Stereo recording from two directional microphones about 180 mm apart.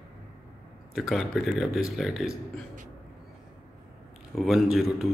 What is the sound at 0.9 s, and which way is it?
Speech, centre (ahead or behind).